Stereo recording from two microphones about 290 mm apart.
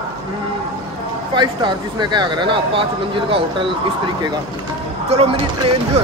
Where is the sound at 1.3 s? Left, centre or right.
Centre.